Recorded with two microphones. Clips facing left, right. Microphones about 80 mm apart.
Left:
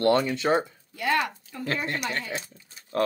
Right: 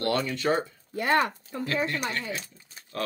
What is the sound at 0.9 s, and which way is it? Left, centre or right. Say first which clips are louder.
Speech: right 2 dB; right.